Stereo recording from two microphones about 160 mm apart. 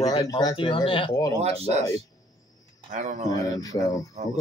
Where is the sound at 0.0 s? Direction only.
25° left (ahead or behind).